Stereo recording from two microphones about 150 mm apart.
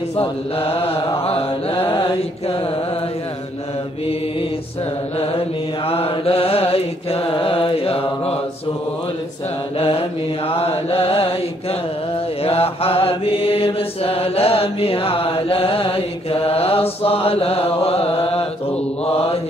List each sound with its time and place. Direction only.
0.6 s mantra: 40° left (ahead or behind)
5.9 s mantra: 40° left (ahead or behind)
9.8 s mantra: 40° left (ahead or behind)
12.4 s mantra: 40° left (ahead or behind)